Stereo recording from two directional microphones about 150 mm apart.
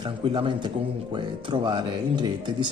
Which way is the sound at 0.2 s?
35° right (ahead or behind).